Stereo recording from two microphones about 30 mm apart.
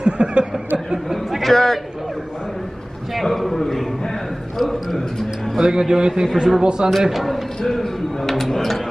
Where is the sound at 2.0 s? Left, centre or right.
Centre.